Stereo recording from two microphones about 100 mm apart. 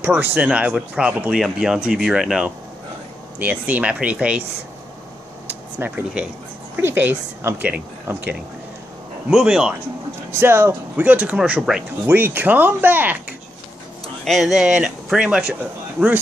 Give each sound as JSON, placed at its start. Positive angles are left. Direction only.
{"t": 0.0, "sound": "speech", "side_deg": -20}
{"t": 3.3, "sound": "speech", "side_deg": -15}
{"t": 5.8, "sound": "speech", "side_deg": -15}
{"t": 9.3, "sound": "speech", "side_deg": -5}
{"t": 10.4, "sound": "speech", "side_deg": -25}
{"t": 14.2, "sound": "speech", "side_deg": 0}